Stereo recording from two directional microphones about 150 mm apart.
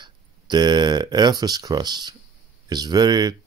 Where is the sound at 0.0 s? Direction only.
30° right (ahead or behind).